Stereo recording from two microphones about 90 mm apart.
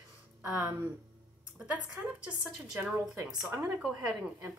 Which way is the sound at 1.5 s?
15° right (ahead or behind).